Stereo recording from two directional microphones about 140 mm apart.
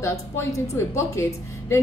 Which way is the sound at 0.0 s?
20° left (ahead or behind).